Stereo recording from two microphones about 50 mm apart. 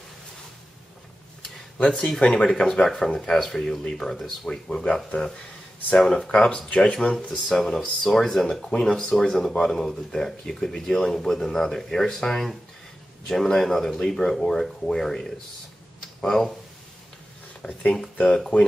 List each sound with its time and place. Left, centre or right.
1.4 s speech: centre
17.6 s speech: centre